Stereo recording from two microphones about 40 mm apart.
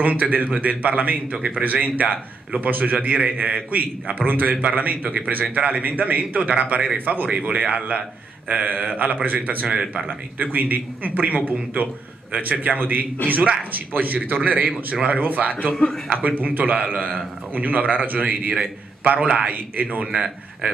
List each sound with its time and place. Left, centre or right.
0.0 s a man's voice: right
9.7 s speech: right
10.4 s a man's voice: right
16.3 s a man's voice: right
19.5 s a man's voice: right